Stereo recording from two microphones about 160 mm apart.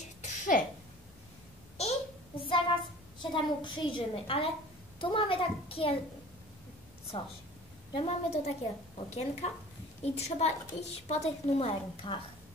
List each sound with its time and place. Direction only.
0.2 s a sound: 50° left (ahead or behind)
2.3 s child singing: 35° left (ahead or behind)
3.2 s a woman's voice: 30° left (ahead or behind)
7.9 s a woman's voice: 40° left (ahead or behind)